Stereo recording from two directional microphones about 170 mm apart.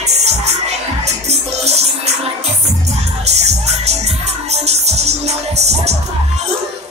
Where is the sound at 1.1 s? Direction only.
40° right (ahead or behind).